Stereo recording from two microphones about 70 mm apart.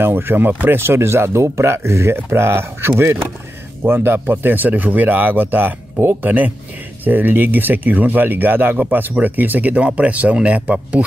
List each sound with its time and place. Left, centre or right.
0.0 s speech: right
0.7 s speech: right; by 11.1 s centre